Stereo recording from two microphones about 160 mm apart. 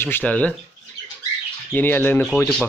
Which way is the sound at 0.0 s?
10° left (ahead or behind).